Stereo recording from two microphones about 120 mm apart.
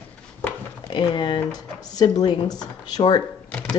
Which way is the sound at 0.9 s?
40° left (ahead or behind).